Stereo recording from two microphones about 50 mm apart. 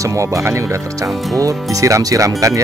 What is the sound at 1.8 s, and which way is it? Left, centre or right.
Speech, right.